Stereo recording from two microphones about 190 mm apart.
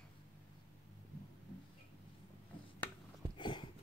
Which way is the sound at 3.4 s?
25° left (ahead or behind).